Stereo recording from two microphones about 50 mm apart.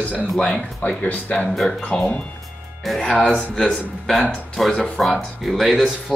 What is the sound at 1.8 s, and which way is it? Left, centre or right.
Speech, left.